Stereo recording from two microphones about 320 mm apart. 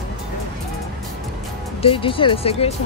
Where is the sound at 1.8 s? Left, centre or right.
Centre.